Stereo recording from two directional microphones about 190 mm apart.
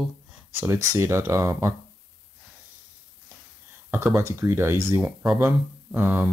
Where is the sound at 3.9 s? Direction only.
10° right (ahead or behind).